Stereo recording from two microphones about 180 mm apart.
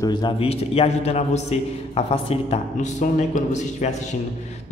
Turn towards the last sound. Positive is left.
turn(degrees=40)  # may be behind; listen again after turning